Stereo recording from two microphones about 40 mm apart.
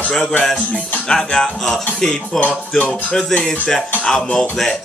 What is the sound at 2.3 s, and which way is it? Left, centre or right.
Music, left.